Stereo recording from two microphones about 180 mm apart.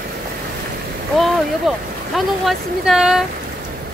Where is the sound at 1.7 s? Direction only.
Centre (ahead or behind).